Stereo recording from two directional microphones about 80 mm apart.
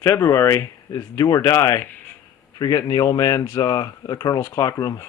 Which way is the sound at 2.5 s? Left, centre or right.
Left.